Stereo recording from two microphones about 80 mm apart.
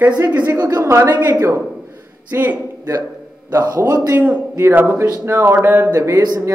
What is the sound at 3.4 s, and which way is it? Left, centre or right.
Speech, right.